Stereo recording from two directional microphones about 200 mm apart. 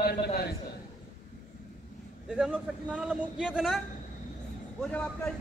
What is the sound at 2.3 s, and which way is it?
A man's voice, 5° right (ahead or behind).